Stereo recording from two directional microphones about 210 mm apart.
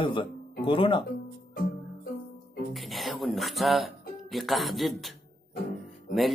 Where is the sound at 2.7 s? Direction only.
Centre (ahead or behind).